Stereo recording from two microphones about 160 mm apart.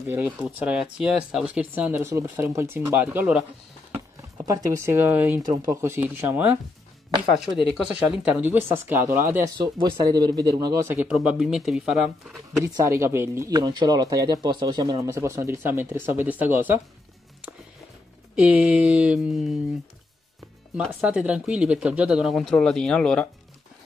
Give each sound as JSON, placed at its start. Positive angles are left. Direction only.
{"t": 0.1, "sound": "speech", "side_deg": -10}
{"t": 4.7, "sound": "speech", "side_deg": -15}
{"t": 9.6, "sound": "speech", "side_deg": -25}
{"t": 10.9, "sound": "speech", "side_deg": -5}
{"t": 12.7, "sound": "speech", "side_deg": -20}
{"t": 18.3, "sound": "speech", "side_deg": -5}
{"t": 20.7, "sound": "speech", "side_deg": -5}